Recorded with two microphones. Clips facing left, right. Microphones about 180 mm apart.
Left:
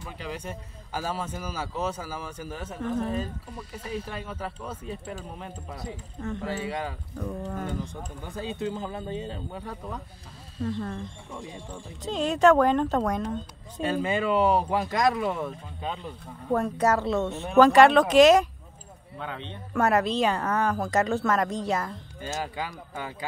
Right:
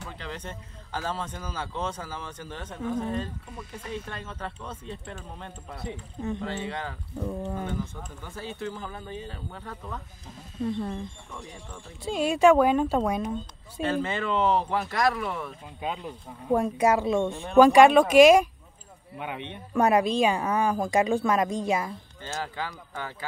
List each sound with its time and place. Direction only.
0.2 s speech: 10° left (ahead or behind)
5.9 s speech: 15° right (ahead or behind)
6.4 s speech: 10° left (ahead or behind)
8.2 s speech: 15° left (ahead or behind)
10.6 s speech: 10° right (ahead or behind)
11.3 s speech: 25° left (ahead or behind)
12.0 s speech: 10° right (ahead or behind)
13.8 s speech: 15° left (ahead or behind)
15.8 s speech: 10° right (ahead or behind)
22.2 s speech: 15° left (ahead or behind)